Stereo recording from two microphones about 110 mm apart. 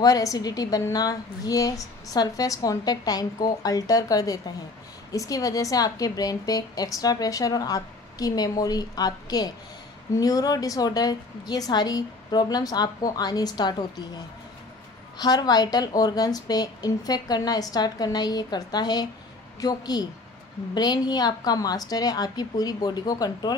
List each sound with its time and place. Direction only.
0.0 s a woman's voice: 30° left (ahead or behind)